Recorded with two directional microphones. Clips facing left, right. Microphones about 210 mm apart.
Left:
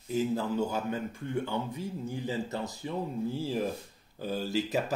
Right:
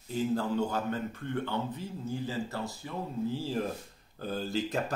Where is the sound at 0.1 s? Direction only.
5° left (ahead or behind).